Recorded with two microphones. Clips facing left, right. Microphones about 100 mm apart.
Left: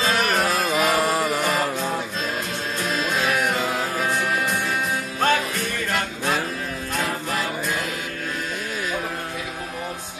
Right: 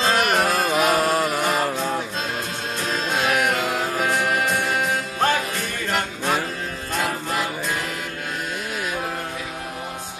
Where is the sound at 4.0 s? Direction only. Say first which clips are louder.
Right 3 dB; 15° right (ahead or behind).